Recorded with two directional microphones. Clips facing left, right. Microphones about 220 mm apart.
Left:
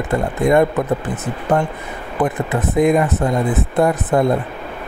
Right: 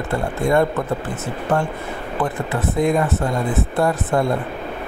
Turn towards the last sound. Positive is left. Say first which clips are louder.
# left 3 dB
turn(degrees=20)  # may be behind; listen again after turning